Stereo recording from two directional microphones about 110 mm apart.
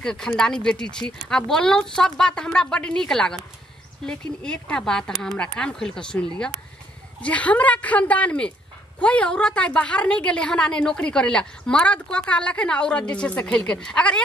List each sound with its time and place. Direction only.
0.0 s a woman's voice: 5° left (ahead or behind)